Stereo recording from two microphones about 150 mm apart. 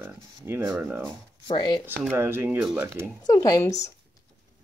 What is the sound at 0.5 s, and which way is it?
Speech, 10° right (ahead or behind).